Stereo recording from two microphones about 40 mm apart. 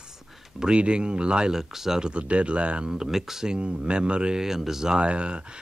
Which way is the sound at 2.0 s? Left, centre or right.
Right.